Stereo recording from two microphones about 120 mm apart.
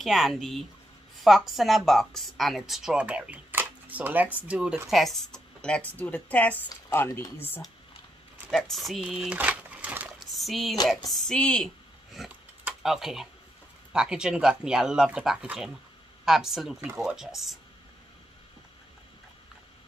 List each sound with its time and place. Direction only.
0.0 s speech: centre (ahead or behind); by 7.6 s 15° left (ahead or behind)
8.5 s speech: centre (ahead or behind)
10.3 s speech: centre (ahead or behind)